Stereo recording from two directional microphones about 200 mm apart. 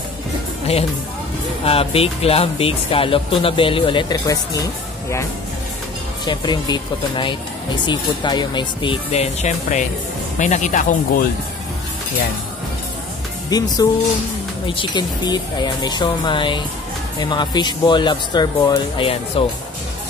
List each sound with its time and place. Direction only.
1.6 s speech: 30° left (ahead or behind)
6.2 s speech: 20° left (ahead or behind); by 11.2 s 40° left (ahead or behind)
13.5 s speech: 20° left (ahead or behind)